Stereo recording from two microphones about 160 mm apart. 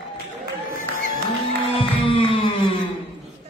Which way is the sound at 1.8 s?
35° left (ahead or behind).